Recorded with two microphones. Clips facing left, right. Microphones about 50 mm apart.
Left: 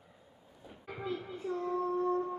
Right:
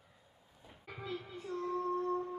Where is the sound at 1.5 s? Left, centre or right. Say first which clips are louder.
Left 4 dB; left.